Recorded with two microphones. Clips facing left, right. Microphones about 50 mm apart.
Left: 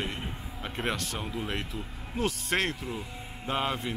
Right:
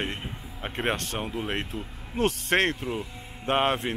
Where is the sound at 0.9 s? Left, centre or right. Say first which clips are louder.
Right 3 dB; right.